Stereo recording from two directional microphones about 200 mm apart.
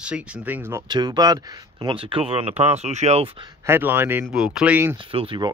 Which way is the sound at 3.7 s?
10° right (ahead or behind).